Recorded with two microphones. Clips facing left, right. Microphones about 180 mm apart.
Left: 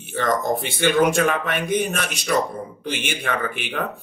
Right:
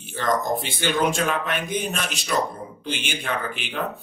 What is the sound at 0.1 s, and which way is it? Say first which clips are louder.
Speech: left 2 dB; 60° left (ahead or behind).